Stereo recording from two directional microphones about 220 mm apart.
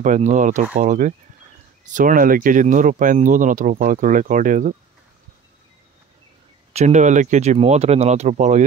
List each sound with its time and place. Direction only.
0.0 s speech: 35° right (ahead or behind)
6.7 s speech: 30° right (ahead or behind)